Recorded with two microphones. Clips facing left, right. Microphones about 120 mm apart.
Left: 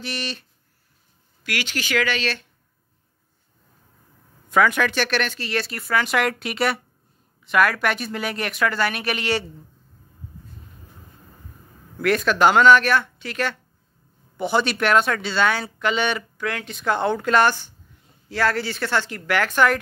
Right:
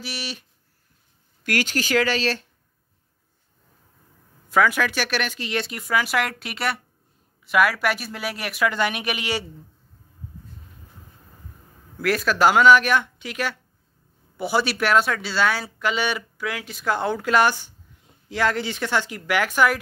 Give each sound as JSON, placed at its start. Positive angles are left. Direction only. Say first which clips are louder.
{"t": 0.0, "sound": "speech", "louder": "left 3 dB", "side_deg": -5}
{"t": 1.4, "sound": "speech", "louder": "right 4 dB", "side_deg": -45}
{"t": 4.5, "sound": "speech", "louder": "left 1 dB", "side_deg": -5}
{"t": 8.7, "sound": "speech", "louder": "left 1 dB", "side_deg": -20}
{"t": 12.0, "sound": "speech", "louder": "left 2 dB", "side_deg": -5}